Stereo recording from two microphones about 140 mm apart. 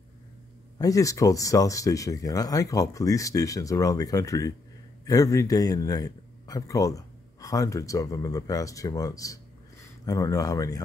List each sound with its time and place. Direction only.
0.7 s a man's voice: 25° left (ahead or behind)